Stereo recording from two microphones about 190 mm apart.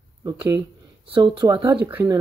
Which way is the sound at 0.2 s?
20° right (ahead or behind).